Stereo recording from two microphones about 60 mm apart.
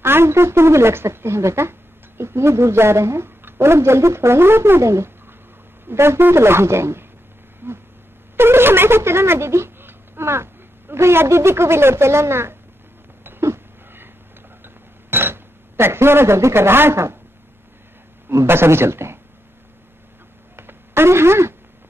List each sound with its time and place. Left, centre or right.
0.0 s a woman's voice: right
7.6 s insect: right
8.4 s a woman's voice: right
14.6 s dishes: right
18.3 s a woman's voice: right
20.5 s a sound: right